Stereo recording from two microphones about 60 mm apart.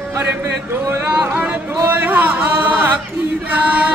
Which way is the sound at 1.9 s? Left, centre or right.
Right.